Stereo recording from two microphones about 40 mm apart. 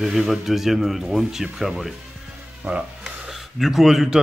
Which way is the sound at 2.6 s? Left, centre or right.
Right.